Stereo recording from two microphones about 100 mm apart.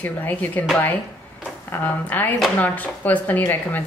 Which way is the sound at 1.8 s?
15° left (ahead or behind).